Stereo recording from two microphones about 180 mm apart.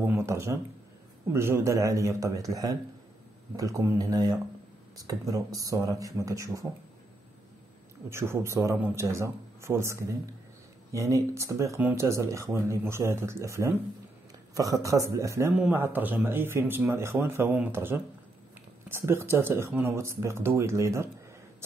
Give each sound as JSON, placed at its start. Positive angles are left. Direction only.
{"t": 0.0, "sound": "a sound", "side_deg": -15}
{"t": 1.3, "sound": "speech", "side_deg": -15}
{"t": 8.1, "sound": "speech", "side_deg": -15}